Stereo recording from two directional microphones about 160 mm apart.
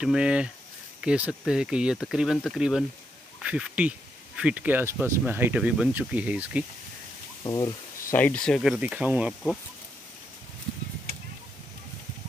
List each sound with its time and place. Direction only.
0.0 s speech: 5° right (ahead or behind)
7.4 s speech: 25° left (ahead or behind)
8.2 s speech: 5° left (ahead or behind); by 9.3 s 10° right (ahead or behind)